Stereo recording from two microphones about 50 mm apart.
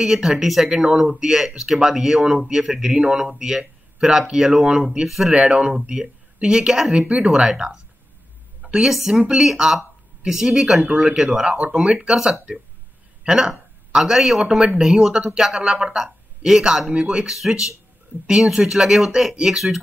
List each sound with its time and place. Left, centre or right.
0.0 s speech: centre
7.0 s speech: right
8.6 s a sound: right
9.1 s speech: centre
9.4 s speech: centre
10.8 s speech: centre
11.5 s a man's voice: right; by 14.4 s centre
14.4 s speech: centre
17.3 s speech: centre